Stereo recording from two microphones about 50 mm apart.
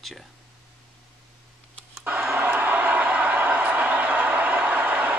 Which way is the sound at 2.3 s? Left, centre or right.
Right.